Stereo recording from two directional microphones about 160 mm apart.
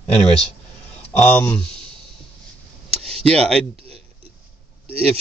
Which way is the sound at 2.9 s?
40° right (ahead or behind).